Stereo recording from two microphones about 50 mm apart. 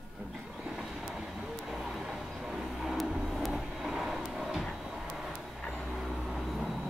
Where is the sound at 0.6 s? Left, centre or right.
Centre.